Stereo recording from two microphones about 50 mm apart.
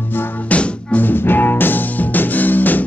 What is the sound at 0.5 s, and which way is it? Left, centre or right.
Music, left.